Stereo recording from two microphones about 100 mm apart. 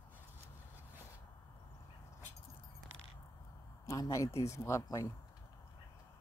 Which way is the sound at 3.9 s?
30° left (ahead or behind).